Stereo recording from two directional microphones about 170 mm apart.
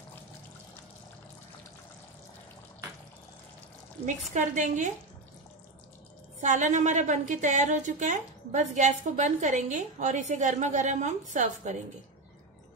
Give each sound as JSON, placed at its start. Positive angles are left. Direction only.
{"t": 4.0, "sound": "a woman's voice", "side_deg": -45}
{"t": 6.4, "sound": "a woman's voice", "side_deg": -45}